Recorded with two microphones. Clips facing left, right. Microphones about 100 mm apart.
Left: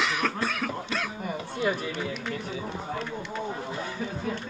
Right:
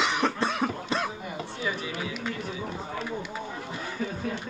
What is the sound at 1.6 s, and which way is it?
Speech, 50° left (ahead or behind).